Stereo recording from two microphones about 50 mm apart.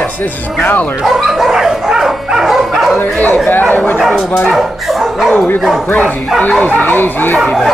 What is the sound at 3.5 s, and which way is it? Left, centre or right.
Speech, left.